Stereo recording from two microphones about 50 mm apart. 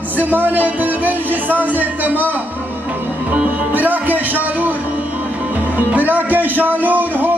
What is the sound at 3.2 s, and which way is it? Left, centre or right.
Music, right.